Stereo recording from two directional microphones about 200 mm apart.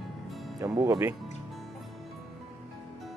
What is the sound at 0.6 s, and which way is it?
Speech, 15° right (ahead or behind).